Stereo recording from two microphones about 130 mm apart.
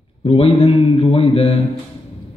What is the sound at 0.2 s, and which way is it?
Speech, 45° left (ahead or behind).